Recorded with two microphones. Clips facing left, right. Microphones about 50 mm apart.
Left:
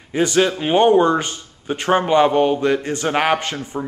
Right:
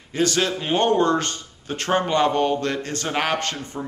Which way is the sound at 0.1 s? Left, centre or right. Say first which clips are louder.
Left 5 dB; centre.